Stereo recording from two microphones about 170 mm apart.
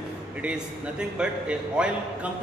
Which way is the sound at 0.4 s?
5° right (ahead or behind).